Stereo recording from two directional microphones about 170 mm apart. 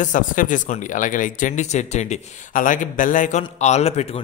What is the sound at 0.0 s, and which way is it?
A man's voice, 50° left (ahead or behind).